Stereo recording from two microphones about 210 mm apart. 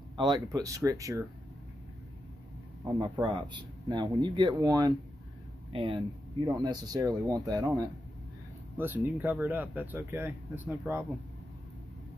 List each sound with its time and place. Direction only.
0.2 s speech: 20° right (ahead or behind)
2.8 s speech: 20° right (ahead or behind)